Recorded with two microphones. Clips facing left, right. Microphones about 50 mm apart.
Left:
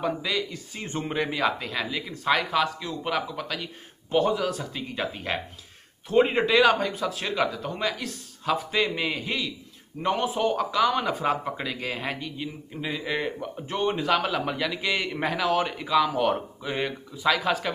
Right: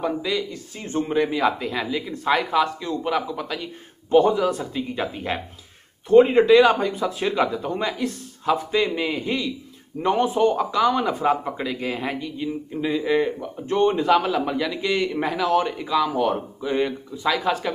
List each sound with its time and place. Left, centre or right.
0.0 s speech: centre
0.7 s speech: left
1.0 s a man's voice: centre
1.3 s speech: centre
6.8 s speech: centre
12.4 s a man's voice: centre
14.7 s a man's voice: centre